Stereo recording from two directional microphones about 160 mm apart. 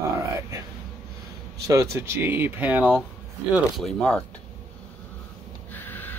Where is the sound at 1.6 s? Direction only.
20° right (ahead or behind).